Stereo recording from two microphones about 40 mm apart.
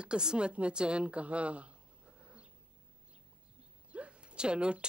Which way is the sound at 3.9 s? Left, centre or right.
Right.